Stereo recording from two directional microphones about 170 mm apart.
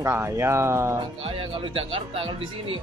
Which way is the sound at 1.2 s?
30° right (ahead or behind).